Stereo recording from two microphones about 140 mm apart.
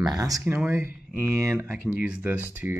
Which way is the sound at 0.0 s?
25° right (ahead or behind).